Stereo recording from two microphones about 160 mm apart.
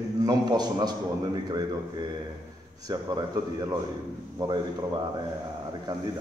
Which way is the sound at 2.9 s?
25° right (ahead or behind).